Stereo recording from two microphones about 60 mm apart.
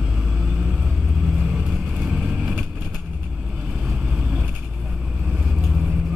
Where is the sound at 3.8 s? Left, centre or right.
Centre.